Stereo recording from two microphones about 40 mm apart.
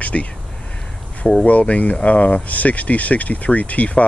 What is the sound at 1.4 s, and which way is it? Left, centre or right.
Speech, left.